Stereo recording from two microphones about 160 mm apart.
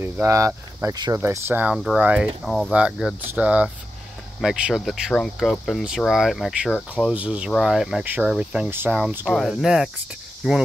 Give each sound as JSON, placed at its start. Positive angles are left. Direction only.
{"t": 0.0, "sound": "speech", "side_deg": -15}
{"t": 9.3, "sound": "speech", "side_deg": 0}